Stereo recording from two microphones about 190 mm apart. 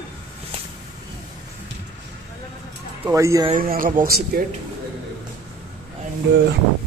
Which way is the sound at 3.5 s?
45° right (ahead or behind).